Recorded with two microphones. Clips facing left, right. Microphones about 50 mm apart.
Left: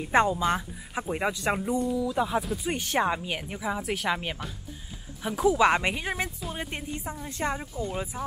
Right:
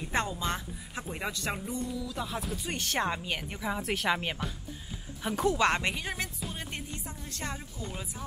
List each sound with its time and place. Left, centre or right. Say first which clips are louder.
0.1 s speech: left 9 dB; centre